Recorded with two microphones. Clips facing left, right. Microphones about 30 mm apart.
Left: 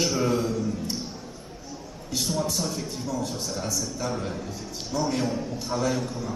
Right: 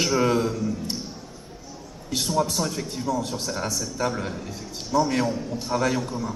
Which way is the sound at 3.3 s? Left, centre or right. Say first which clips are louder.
Right 2 dB; centre.